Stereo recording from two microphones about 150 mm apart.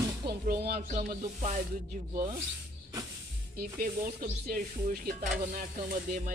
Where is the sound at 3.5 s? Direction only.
70° right (ahead or behind).